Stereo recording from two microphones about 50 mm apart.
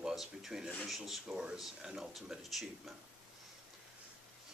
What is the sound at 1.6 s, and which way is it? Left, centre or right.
Speech, centre.